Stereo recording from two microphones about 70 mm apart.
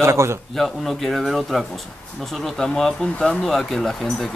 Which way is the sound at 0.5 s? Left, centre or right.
Centre.